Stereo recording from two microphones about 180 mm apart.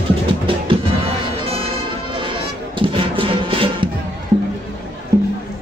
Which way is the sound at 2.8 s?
30° right (ahead or behind).